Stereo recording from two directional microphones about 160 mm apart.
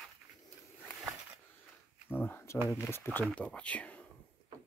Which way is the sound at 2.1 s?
10° left (ahead or behind).